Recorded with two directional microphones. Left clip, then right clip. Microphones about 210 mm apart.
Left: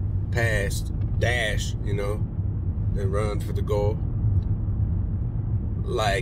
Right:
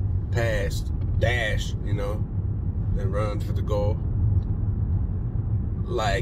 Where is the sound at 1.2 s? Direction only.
20° left (ahead or behind).